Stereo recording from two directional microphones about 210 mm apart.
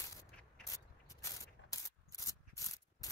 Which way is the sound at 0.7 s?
15° left (ahead or behind).